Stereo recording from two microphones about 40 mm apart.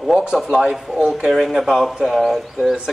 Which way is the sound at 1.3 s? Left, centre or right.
Centre.